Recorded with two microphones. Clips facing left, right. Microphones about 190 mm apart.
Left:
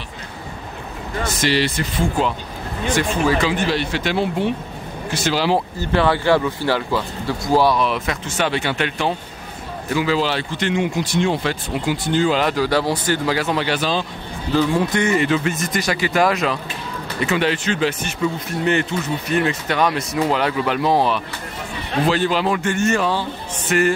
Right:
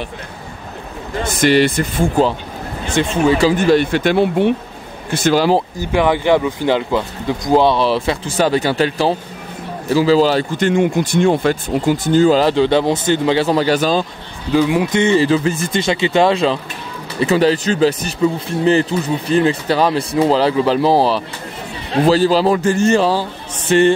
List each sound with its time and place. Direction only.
1.4 s speech: 55° right (ahead or behind)
2.9 s speech: 25° right (ahead or behind)
3.4 s speech: 45° right (ahead or behind)
5.8 s speech: 10° right (ahead or behind); by 14.0 s 45° right (ahead or behind)
14.5 s speech: 15° right (ahead or behind); by 23.8 s 30° right (ahead or behind)